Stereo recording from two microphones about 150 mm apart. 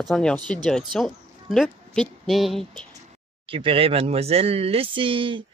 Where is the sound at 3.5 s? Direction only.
35° right (ahead or behind).